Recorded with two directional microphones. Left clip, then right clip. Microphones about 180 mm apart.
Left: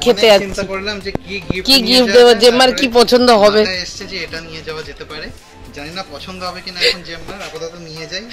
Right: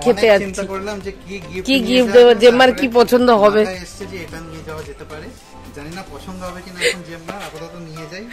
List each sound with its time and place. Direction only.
0.0 s speech: 5° right (ahead or behind)
0.6 s speech: 20° right (ahead or behind)
1.6 s speech: centre (ahead or behind)